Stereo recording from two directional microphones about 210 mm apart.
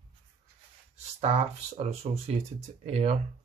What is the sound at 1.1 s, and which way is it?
Speech, 30° right (ahead or behind).